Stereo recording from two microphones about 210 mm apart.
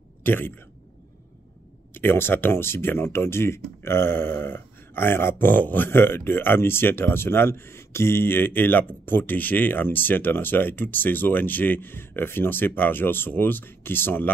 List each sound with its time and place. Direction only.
0.2 s speech: 10° left (ahead or behind)
2.0 s speech: 10° left (ahead or behind)